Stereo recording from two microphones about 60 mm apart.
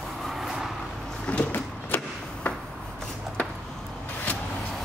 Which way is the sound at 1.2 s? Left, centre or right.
Left.